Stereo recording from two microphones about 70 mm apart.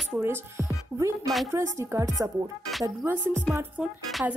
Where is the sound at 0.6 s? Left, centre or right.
Right.